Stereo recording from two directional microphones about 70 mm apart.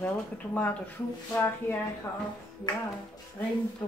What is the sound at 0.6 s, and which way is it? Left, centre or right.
Speech, left.